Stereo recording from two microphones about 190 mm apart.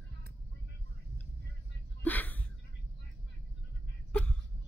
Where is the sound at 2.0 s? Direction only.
10° left (ahead or behind).